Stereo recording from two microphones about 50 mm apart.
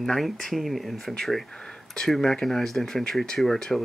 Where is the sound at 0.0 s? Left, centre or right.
Centre.